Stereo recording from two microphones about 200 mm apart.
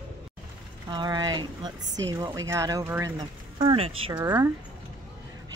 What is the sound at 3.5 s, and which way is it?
Speech, 30° right (ahead or behind).